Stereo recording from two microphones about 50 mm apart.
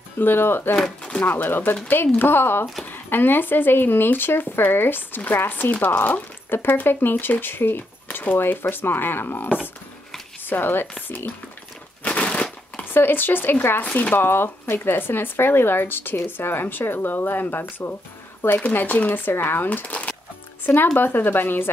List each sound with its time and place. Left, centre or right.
0.2 s speech: left
12.0 s a sound: left
12.9 s speech: left
13.8 s speech: left
14.1 s speech: left
20.6 s speech: left